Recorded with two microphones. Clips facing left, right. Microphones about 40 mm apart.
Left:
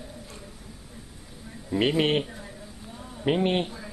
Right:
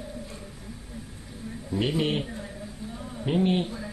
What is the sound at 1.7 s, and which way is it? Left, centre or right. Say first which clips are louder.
Speech: left 3 dB; left.